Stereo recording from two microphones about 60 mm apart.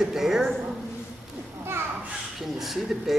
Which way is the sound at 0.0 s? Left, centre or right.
Centre.